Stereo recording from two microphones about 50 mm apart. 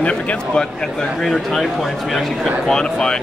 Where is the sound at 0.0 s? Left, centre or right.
Left.